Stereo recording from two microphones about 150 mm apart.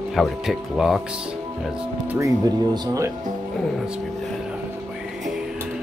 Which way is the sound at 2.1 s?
25° right (ahead or behind).